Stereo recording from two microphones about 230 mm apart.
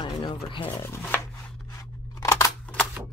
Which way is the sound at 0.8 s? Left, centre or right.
Centre.